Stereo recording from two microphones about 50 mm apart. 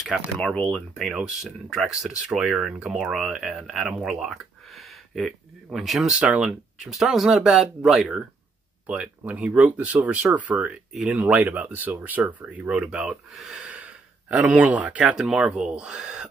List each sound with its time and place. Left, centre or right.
0.0 s speech: centre
6.1 s speech: centre
6.8 s speech: centre
8.0 s speech: centre; by 12.6 s right
12.6 s speech: centre
13.3 s speech: centre
13.6 s speech: right
15.1 s speech: centre